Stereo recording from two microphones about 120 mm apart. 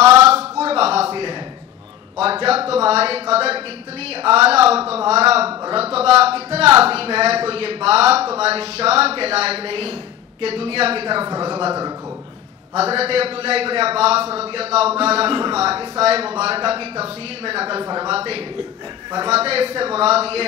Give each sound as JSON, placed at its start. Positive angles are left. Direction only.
{"t": 0.2, "sound": "a sound", "side_deg": -60}
{"t": 2.7, "sound": "a man's voice", "side_deg": -55}
{"t": 12.7, "sound": "a man's voice", "side_deg": -55}